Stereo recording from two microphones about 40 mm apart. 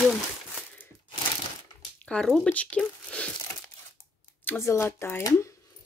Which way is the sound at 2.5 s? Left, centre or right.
Left.